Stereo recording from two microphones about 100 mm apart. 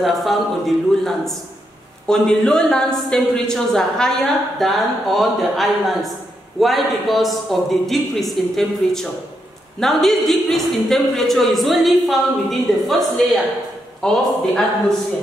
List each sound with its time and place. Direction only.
0.0 s a woman's voice: centre (ahead or behind)